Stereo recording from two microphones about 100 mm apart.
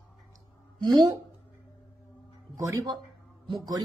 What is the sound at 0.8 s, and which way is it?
Speech, 45° right (ahead or behind).